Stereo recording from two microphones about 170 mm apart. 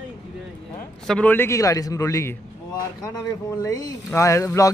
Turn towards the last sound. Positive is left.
turn(degrees=20)  # may be behind; listen again after turning